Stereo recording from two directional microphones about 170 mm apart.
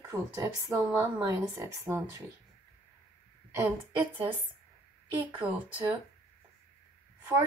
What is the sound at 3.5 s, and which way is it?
Speech, 15° right (ahead or behind).